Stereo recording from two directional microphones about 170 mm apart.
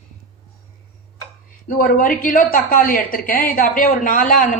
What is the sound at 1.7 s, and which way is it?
A woman's voice, 55° left (ahead or behind).